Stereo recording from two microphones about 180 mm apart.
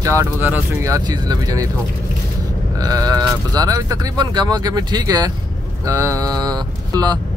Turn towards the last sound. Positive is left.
turn(degrees=-20)  # may be behind; listen again after turning